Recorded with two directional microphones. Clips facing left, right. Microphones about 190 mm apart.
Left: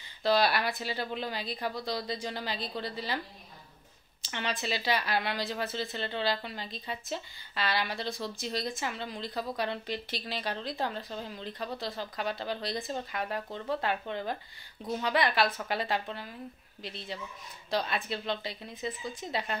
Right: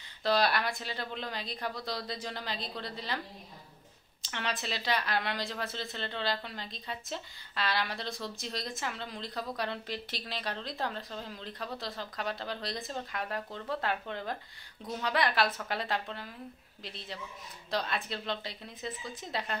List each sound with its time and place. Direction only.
0.2 s speech: centre (ahead or behind)
4.2 s speech: centre (ahead or behind)